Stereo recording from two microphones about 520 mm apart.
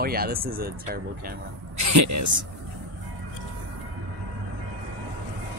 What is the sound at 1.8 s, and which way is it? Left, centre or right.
Speech, right.